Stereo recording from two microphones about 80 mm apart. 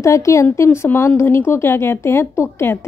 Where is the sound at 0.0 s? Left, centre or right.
Left.